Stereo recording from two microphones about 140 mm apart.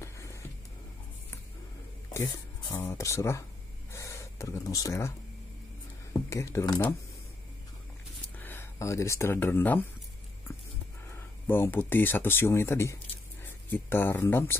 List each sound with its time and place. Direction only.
0.0 s music: 20° left (ahead or behind)
2.1 s speech: 20° left (ahead or behind)
3.9 s gasp: 20° left (ahead or behind)
6.3 s speech: 20° left (ahead or behind)
8.4 s speech: 15° left (ahead or behind)
11.1 s speech: 15° left (ahead or behind)